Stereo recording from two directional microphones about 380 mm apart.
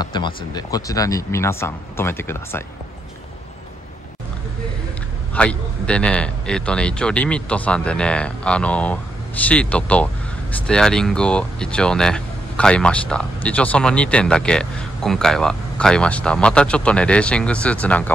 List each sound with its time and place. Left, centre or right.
0.0 s speech: centre
5.3 s speech: centre